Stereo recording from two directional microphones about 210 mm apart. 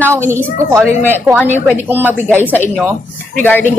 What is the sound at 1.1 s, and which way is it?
Speech, 10° left (ahead or behind).